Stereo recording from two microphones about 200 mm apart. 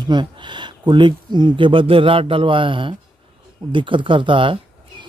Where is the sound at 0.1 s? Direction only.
25° right (ahead or behind).